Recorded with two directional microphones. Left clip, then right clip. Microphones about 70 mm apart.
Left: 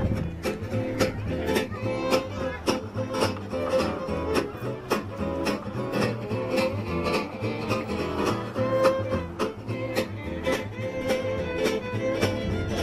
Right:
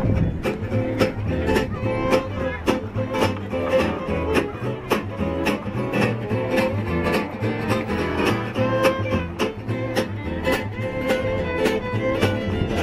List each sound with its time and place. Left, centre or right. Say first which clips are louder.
0.1 s music: right 5 dB; left
3.6 s music: right 5 dB; centre; by 9.5 s right
9.9 s music: right 4 dB; centre
12.3 s music: right 5 dB; centre